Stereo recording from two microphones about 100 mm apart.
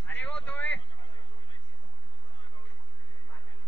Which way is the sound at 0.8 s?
55° left (ahead or behind).